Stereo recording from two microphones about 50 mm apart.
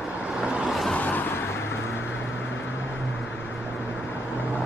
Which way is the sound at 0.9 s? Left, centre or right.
Left.